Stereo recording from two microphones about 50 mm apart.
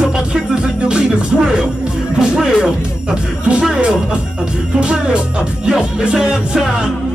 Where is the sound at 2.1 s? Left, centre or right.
Centre.